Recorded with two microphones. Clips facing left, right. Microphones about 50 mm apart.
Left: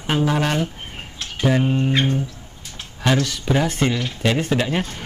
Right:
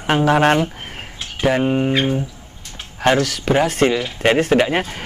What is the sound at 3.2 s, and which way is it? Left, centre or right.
Speech, right.